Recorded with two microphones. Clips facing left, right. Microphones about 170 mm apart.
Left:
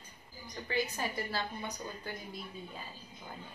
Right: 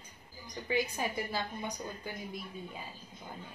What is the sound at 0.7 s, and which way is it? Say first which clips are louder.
A woman's voice: right 2 dB; 15° right (ahead or behind).